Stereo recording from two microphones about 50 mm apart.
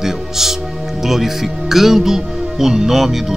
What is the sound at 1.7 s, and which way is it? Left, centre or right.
Speech, centre.